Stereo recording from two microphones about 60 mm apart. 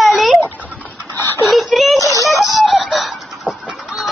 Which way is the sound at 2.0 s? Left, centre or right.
Left.